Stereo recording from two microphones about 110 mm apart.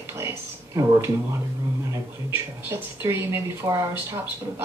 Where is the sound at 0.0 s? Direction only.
20° right (ahead or behind).